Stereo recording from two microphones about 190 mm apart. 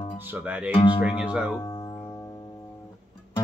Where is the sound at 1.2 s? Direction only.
5° right (ahead or behind).